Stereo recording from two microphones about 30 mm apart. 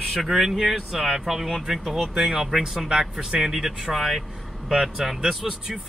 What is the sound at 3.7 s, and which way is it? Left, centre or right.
Speech, right.